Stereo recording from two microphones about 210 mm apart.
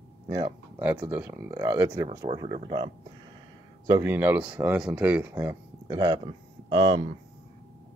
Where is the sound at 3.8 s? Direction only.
15° right (ahead or behind).